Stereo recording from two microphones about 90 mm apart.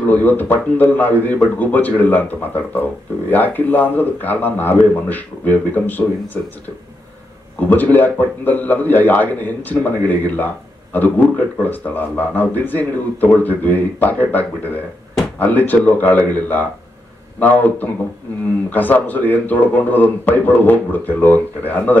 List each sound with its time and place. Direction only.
0.0 s a man's voice: 20° left (ahead or behind)
7.6 s a man's voice: 20° left (ahead or behind)